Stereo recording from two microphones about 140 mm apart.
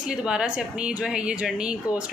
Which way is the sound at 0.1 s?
5° right (ahead or behind).